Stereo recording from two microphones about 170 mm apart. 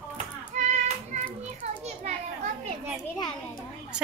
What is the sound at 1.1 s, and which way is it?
Children playing, 40° right (ahead or behind).